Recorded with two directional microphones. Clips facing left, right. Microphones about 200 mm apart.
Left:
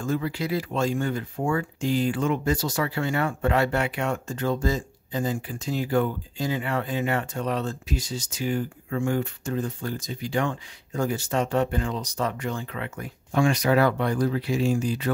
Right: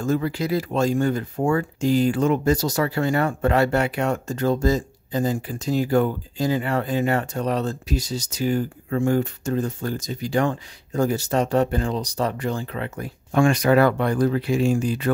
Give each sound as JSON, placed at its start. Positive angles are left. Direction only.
{"t": 0.0, "sound": "speech", "side_deg": -40}
{"t": 13.3, "sound": "speech", "side_deg": -55}